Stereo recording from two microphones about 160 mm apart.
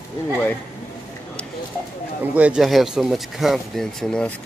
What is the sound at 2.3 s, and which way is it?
Speech, 10° right (ahead or behind).